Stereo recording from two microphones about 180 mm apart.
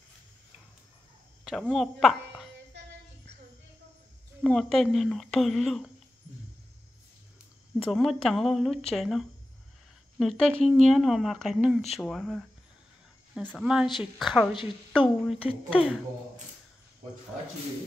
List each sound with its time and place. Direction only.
1.4 s speech: centre (ahead or behind)
4.4 s speech: 5° left (ahead or behind)
7.7 s speech: 5° left (ahead or behind)
13.5 s speech: centre (ahead or behind)
15.3 s speech: 30° left (ahead or behind)